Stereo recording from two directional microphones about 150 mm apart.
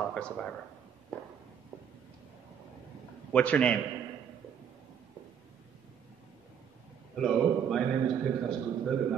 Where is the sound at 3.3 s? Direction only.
10° left (ahead or behind).